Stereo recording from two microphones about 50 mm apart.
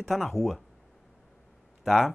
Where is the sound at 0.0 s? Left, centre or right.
Centre.